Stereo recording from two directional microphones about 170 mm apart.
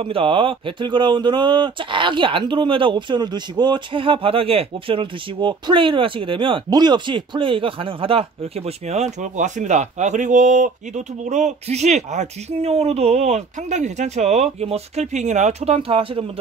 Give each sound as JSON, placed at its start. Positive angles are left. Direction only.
{"t": 0.0, "sound": "speech", "side_deg": -30}